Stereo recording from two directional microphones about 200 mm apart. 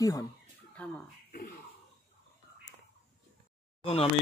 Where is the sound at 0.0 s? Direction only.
20° left (ahead or behind).